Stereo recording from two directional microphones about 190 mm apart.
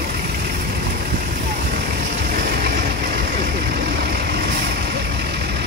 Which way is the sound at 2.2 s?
50° right (ahead or behind).